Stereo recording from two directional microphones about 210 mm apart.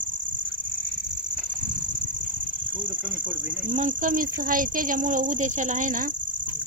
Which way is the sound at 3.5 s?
35° right (ahead or behind).